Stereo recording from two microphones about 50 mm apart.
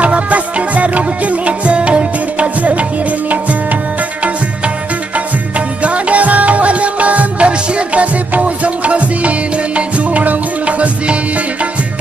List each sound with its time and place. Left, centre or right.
0.0 s music: right
5.9 s music: right